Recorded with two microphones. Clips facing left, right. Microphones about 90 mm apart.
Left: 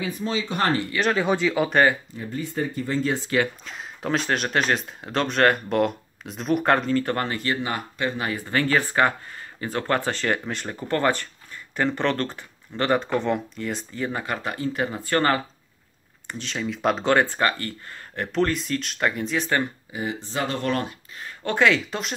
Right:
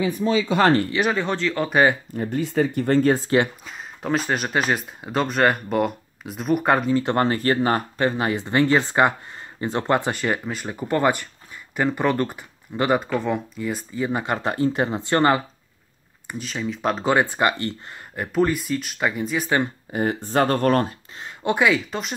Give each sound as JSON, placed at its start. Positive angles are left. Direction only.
{"t": 1.1, "sound": "speech", "side_deg": 10}
{"t": 2.1, "sound": "speech", "side_deg": -75}
{"t": 3.6, "sound": "speech", "side_deg": 0}
{"t": 7.0, "sound": "speech", "side_deg": -20}
{"t": 7.2, "sound": "speech", "side_deg": -40}
{"t": 8.2, "sound": "speech", "side_deg": -25}
{"t": 14.2, "sound": "speech", "side_deg": -25}
{"t": 16.3, "sound": "speech", "side_deg": -5}
{"t": 18.1, "sound": "speech", "side_deg": -10}
{"t": 19.9, "sound": "speech", "side_deg": -50}
{"t": 21.2, "sound": "speech", "side_deg": -15}